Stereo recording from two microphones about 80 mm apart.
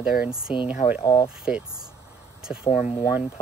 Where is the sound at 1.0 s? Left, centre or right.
Left.